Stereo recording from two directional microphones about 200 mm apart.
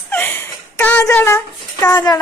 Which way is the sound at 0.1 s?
10° left (ahead or behind).